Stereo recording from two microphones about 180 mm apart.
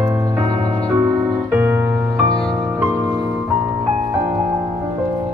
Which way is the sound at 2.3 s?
5° left (ahead or behind).